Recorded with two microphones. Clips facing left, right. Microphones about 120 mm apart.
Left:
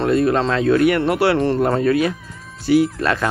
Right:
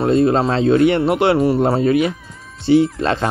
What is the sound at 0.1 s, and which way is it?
Speech, 25° right (ahead or behind).